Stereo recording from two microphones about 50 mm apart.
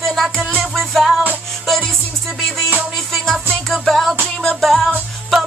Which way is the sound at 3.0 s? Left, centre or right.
Centre.